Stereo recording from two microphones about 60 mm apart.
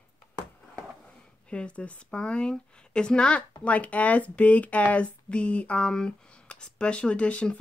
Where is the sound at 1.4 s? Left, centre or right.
Centre.